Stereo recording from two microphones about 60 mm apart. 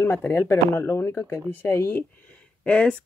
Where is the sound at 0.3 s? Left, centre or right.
Left.